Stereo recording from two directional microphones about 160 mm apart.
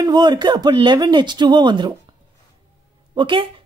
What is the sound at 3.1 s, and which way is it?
Speech, 30° right (ahead or behind).